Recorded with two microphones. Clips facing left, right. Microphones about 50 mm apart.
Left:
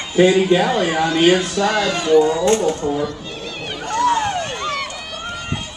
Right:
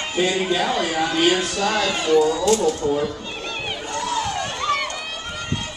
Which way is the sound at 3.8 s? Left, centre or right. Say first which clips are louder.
Left 9 dB; left.